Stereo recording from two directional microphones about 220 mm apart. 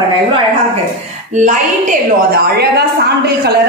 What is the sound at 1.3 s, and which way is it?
A woman's voice, 35° right (ahead or behind).